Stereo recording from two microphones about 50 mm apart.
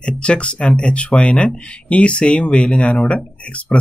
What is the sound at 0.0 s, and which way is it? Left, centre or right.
Speech, left.